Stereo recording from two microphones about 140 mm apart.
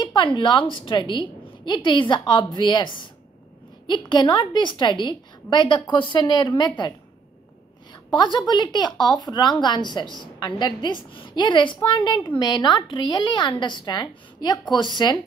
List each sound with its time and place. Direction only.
0.0 s a woman's voice: 35° left (ahead or behind)
7.9 s a woman's voice: 35° left (ahead or behind)